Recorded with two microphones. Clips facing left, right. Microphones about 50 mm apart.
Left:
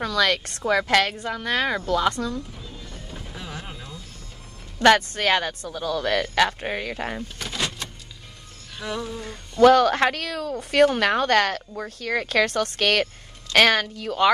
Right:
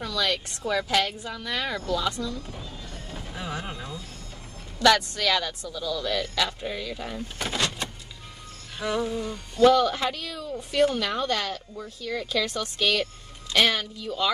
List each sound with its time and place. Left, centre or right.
0.0 s speech: left
2.9 s a sound: centre
4.7 s speech: left
7.3 s vehicle: centre
8.7 s music: centre
9.2 s speech: left